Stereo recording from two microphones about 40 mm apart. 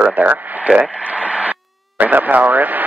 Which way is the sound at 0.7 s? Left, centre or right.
Right.